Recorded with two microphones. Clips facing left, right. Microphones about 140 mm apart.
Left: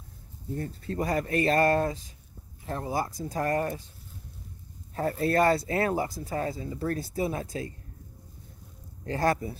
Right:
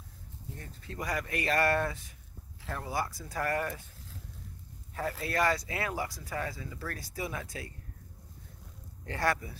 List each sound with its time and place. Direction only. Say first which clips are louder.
0.6 s speech: left 10 dB; 35° left (ahead or behind)
3.1 s speech: left 11 dB; 45° left (ahead or behind)
3.3 s speech: left 4 dB; 30° left (ahead or behind)
4.9 s speech: left 7 dB; 30° left (ahead or behind)
6.2 s speech: left 6 dB; 30° left (ahead or behind)
9.0 s speech: left 5 dB; 35° left (ahead or behind)